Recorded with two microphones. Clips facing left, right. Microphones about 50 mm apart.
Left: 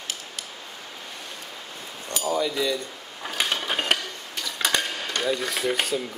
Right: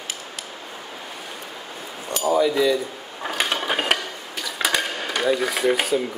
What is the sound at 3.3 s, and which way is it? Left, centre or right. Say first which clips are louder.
Dishes: right 3 dB; centre.